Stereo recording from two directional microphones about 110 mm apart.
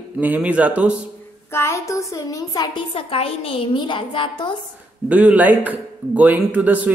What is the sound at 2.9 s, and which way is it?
A woman's voice, 60° left (ahead or behind).